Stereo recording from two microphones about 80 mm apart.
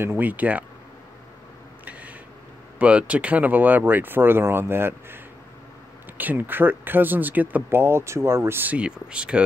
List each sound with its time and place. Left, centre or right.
0.2 s speech: centre
1.9 s a sound: centre
2.8 s speech: centre
8.7 s speech: centre